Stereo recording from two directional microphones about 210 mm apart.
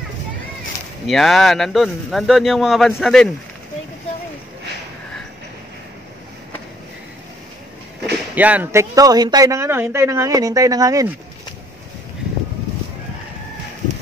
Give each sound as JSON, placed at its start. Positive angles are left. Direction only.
{"t": 1.0, "sound": "speech", "side_deg": 0}
{"t": 8.4, "sound": "a man's voice", "side_deg": -5}